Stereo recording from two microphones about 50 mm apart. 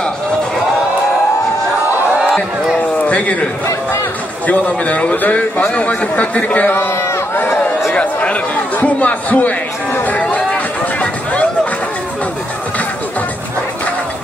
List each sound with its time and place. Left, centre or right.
3.1 s a man's voice: left
4.5 s a man's voice: left
6.7 s a man's voice: left
7.9 s a sound: left
8.7 s a man's voice: left
10.3 s a sound: left